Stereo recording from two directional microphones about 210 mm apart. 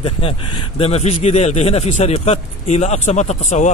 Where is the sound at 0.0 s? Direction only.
25° left (ahead or behind).